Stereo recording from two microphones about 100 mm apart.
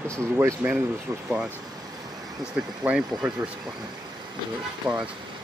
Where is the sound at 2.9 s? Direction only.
10° right (ahead or behind).